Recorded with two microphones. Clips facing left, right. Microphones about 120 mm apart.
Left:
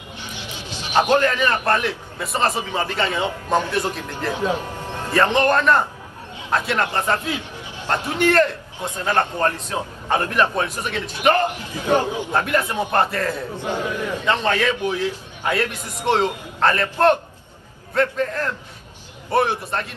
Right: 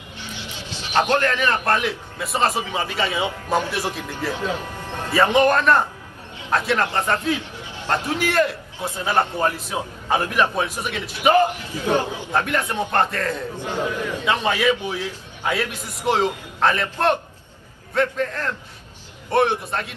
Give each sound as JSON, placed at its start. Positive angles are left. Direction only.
{"t": 0.9, "sound": "a man's voice", "side_deg": 15}
{"t": 1.7, "sound": "a man's voice", "side_deg": 0}
{"t": 4.3, "sound": "speech", "side_deg": 15}
{"t": 5.1, "sound": "a man's voice", "side_deg": -5}
{"t": 7.5, "sound": "a sound", "side_deg": 15}
{"t": 8.2, "sound": "a man's voice", "side_deg": -5}
{"t": 11.6, "sound": "a man's voice", "side_deg": 20}
{"t": 12.4, "sound": "a man's voice", "side_deg": 5}
{"t": 14.2, "sound": "a man's voice", "side_deg": -10}
{"t": 17.9, "sound": "a man's voice", "side_deg": 5}